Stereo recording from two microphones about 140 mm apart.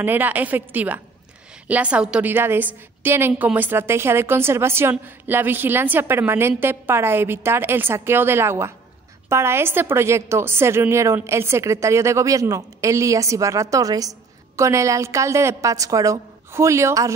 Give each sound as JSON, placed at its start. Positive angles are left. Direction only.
{"t": 0.0, "sound": "a woman's voice", "side_deg": -15}